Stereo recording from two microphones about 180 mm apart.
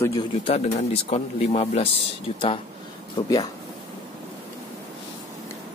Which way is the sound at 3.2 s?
25° left (ahead or behind).